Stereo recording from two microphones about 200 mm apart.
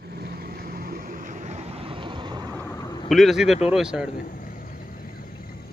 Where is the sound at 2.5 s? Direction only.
10° left (ahead or behind).